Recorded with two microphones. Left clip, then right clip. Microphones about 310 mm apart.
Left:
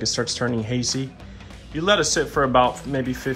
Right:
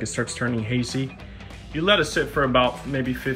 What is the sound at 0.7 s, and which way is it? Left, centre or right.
Speech, left.